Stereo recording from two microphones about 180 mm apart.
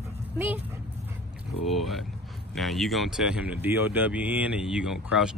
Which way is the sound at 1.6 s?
Centre (ahead or behind).